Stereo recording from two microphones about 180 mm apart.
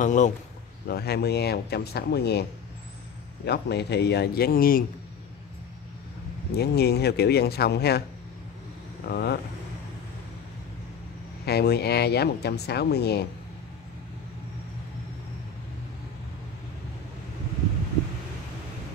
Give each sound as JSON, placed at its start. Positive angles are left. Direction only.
{"t": 0.0, "sound": "a man's voice", "side_deg": 45}
{"t": 0.8, "sound": "speech", "side_deg": 60}
{"t": 3.4, "sound": "speech", "side_deg": 65}
{"t": 6.5, "sound": "speech", "side_deg": 65}
{"t": 9.1, "sound": "speech", "side_deg": 65}
{"t": 11.4, "sound": "speech", "side_deg": 65}